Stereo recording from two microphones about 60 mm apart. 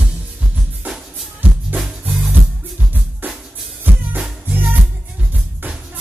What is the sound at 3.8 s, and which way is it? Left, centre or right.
Music, right.